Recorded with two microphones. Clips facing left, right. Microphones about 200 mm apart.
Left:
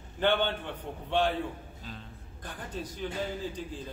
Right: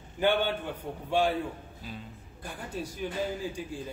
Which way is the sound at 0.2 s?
10° right (ahead or behind).